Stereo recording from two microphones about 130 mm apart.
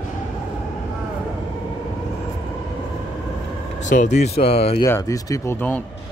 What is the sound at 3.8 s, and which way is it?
Speech, 70° left (ahead or behind).